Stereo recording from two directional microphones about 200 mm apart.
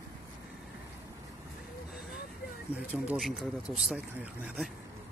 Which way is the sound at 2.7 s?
10° right (ahead or behind).